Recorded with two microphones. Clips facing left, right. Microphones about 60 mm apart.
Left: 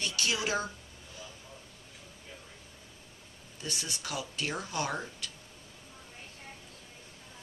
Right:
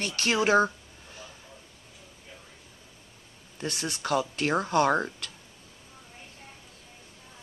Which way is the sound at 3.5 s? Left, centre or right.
Right.